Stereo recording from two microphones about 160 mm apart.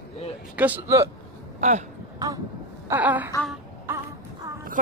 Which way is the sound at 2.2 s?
20° right (ahead or behind).